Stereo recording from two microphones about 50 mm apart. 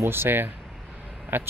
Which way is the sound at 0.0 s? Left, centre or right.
Right.